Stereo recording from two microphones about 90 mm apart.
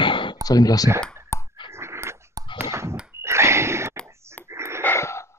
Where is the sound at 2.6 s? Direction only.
30° right (ahead or behind).